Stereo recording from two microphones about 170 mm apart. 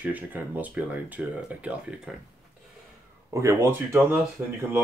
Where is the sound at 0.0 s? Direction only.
10° right (ahead or behind).